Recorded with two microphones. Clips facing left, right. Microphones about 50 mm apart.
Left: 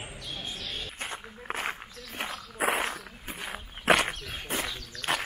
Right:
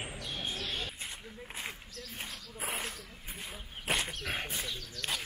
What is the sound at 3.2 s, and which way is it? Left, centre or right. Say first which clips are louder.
Wild animals: left 7 dB; left.